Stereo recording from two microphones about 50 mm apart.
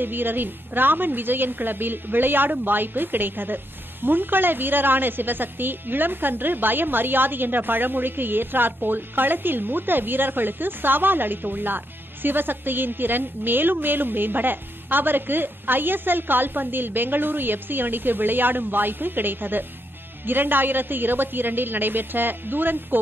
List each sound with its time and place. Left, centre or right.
0.0 s a woman's voice: right